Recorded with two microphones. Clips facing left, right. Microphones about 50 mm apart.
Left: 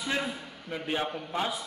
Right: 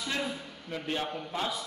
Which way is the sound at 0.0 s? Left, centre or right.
Centre.